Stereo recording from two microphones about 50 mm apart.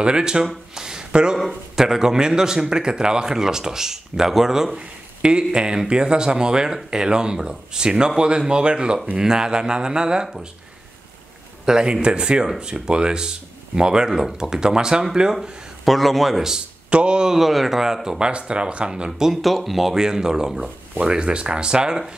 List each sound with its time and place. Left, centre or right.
0.0 s speech: centre
0.7 s a sound: centre
1.4 s speech: centre
11.6 s speech: centre
15.8 s a man's voice: centre
16.5 s speech: centre
17.4 s speech: centre